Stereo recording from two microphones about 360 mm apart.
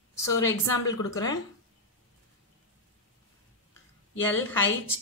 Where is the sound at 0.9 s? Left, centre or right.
Centre.